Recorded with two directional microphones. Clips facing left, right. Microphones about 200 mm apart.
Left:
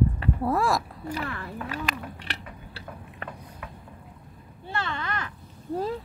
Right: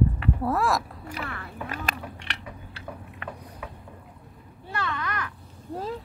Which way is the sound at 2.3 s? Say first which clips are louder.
Even; 35° left (ahead or behind).